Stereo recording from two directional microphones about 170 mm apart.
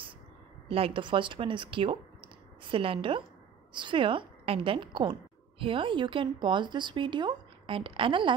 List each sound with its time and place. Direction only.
0.7 s a woman's voice: 35° right (ahead or behind)